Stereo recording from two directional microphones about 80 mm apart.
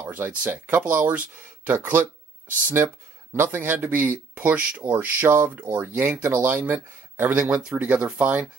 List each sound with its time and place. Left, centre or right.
0.1 s speech: right
3.3 s speech: right